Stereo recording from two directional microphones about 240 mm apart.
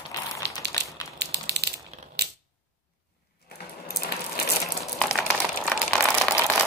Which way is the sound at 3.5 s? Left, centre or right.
Left.